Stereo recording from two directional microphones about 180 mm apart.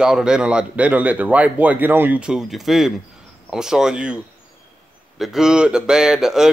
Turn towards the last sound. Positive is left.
turn(degrees=-5)  # may be behind; listen again after turning